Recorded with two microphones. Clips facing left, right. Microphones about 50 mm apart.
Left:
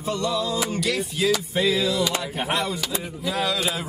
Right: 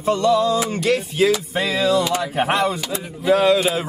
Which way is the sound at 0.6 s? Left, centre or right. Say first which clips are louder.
Right 5 dB; right.